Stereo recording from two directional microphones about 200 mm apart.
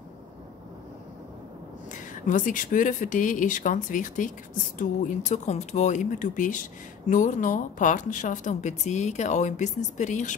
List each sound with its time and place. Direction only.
1.9 s speech: 40° left (ahead or behind)